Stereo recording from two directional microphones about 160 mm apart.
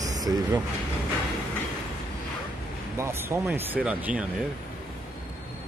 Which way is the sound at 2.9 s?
15° right (ahead or behind).